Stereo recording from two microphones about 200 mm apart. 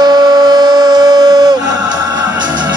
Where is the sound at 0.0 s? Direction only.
20° right (ahead or behind).